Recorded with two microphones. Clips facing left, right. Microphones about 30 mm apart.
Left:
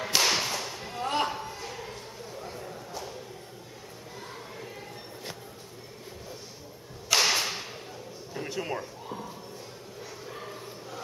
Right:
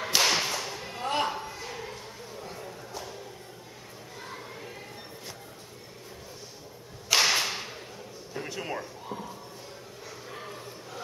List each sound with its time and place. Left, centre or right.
0.0 s whip: centre
7.1 s whip: centre
8.3 s a sound: centre
10.3 s bow-wow: centre